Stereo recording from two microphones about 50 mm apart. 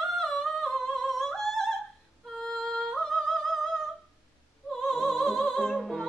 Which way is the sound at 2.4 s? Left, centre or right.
Centre.